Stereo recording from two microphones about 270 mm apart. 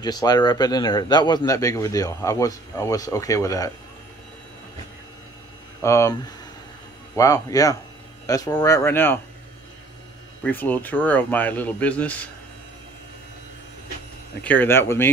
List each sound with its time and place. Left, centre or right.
0.0 s speech: centre
5.8 s speech: centre
7.2 s speech: centre
10.4 s speech: centre
14.4 s speech: centre